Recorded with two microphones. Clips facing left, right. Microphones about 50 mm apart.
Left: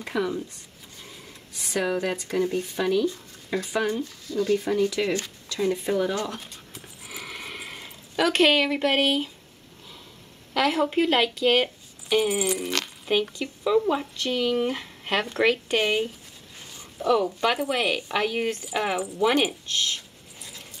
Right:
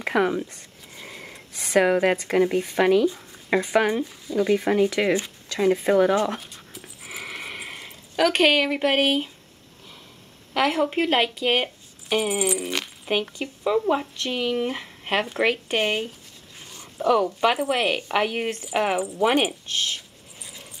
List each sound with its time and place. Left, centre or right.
0.0 s speech: right
4.6 s speech: right
7.1 s a sound: centre
8.2 s speech: centre
10.5 s speech: centre
12.4 s a sound: centre
13.1 s speech: right
17.0 s speech: right
17.6 s speech: right